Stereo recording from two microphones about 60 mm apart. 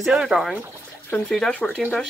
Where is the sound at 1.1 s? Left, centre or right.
Centre.